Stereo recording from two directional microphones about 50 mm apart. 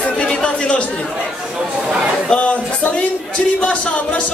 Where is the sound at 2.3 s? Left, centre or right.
Left.